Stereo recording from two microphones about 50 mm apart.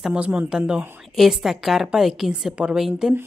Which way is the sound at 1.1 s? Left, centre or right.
Centre.